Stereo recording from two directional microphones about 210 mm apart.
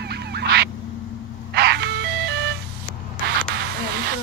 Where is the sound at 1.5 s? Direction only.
50° right (ahead or behind).